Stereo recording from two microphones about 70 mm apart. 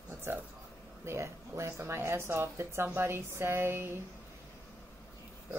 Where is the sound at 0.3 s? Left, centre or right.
Right.